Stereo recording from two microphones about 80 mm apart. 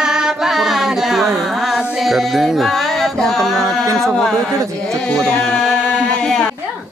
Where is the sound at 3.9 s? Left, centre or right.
Centre.